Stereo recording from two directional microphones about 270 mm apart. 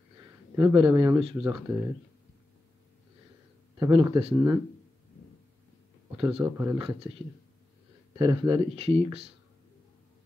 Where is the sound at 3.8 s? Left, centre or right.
Centre.